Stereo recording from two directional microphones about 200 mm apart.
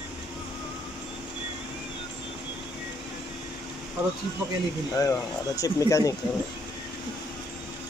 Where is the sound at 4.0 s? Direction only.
10° right (ahead or behind).